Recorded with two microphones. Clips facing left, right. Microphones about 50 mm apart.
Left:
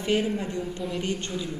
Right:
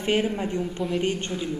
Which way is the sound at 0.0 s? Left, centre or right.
Right.